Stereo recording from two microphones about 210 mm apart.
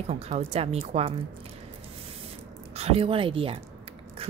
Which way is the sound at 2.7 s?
30° right (ahead or behind).